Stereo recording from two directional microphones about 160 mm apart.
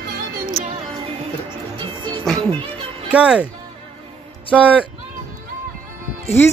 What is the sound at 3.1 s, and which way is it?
Speech, 10° right (ahead or behind).